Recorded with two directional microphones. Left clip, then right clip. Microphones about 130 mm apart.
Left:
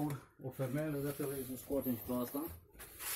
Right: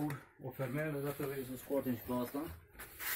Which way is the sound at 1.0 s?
60° left (ahead or behind).